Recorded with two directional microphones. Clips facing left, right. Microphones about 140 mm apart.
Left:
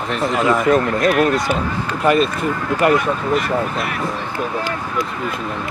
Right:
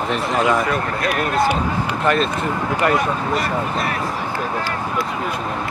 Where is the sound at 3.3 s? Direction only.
40° right (ahead or behind).